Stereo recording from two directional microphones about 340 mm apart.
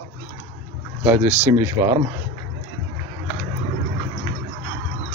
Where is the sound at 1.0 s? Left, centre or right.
Centre.